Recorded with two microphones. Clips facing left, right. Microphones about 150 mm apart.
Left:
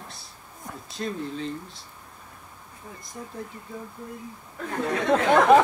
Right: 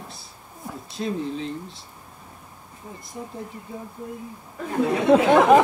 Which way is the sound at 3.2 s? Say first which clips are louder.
Right 4 dB; 10° right (ahead or behind).